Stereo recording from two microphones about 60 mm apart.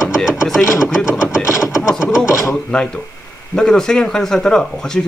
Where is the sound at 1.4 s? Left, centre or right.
Left.